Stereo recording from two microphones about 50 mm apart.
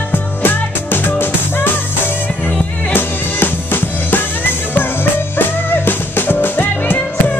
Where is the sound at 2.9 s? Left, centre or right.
Left.